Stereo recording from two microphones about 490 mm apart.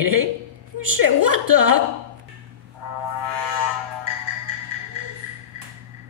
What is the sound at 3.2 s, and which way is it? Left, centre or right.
Music, right.